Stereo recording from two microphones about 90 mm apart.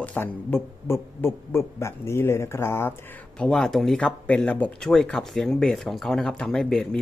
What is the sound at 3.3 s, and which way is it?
Speech, 5° left (ahead or behind).